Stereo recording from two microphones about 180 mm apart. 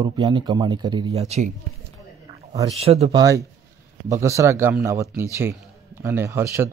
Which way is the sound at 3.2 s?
20° right (ahead or behind).